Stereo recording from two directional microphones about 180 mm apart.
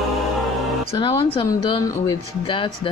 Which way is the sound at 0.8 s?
30° left (ahead or behind).